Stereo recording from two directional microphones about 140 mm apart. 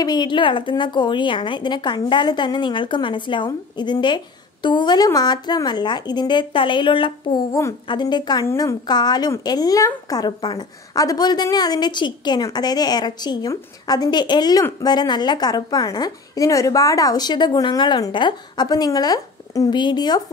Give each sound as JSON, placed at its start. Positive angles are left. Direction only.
{"t": 0.0, "sound": "a woman's voice", "side_deg": 30}